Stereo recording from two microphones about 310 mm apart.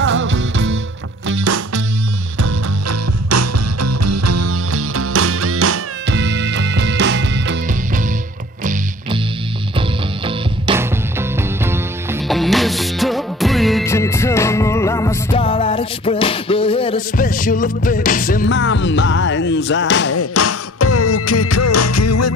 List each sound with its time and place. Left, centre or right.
0.0 s music: right
1.3 s music: right
9.8 s music: centre; by 20.1 s left
20.1 s music: left